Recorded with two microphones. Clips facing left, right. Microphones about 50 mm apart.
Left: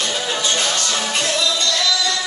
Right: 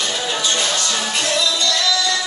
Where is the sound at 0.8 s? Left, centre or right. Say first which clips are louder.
Even; left.